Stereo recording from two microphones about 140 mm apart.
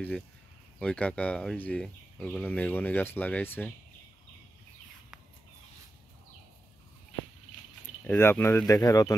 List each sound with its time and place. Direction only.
0.7 s speech: 10° left (ahead or behind)
8.0 s speech: 15° left (ahead or behind)